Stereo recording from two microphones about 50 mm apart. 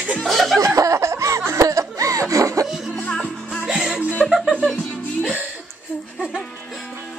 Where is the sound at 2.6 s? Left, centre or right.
Centre.